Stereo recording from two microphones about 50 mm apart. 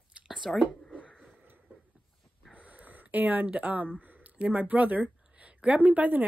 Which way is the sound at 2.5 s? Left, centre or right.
Right.